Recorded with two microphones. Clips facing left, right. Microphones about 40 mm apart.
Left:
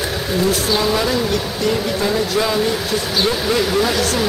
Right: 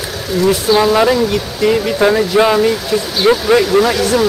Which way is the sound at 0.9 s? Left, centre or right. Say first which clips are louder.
Right 6 dB; right.